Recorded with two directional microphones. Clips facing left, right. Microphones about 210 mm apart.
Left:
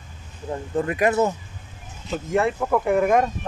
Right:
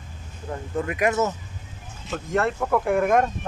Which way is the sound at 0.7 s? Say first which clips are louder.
Left 3 dB; 35° left (ahead or behind).